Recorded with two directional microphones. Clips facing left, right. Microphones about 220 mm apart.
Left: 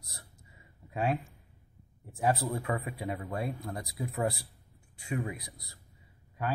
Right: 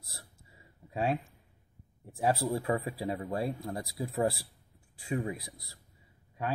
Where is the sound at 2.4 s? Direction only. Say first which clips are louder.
Right 3 dB; 25° right (ahead or behind).